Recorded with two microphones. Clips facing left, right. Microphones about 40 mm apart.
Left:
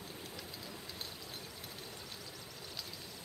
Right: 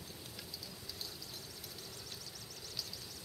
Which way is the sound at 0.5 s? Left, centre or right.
Left.